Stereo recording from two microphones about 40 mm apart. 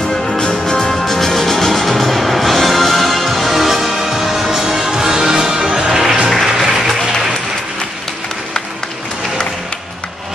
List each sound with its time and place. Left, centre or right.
0.3 s music: left; by 6.6 s centre
6.6 s applause: centre